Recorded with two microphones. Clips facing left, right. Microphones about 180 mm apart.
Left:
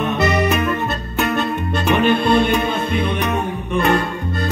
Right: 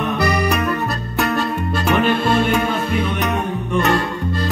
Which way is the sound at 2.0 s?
20° left (ahead or behind).